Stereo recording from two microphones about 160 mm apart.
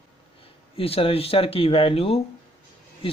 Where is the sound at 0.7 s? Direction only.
35° left (ahead or behind).